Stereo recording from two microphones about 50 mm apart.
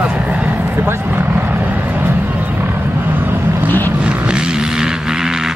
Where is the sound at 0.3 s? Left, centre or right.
Right.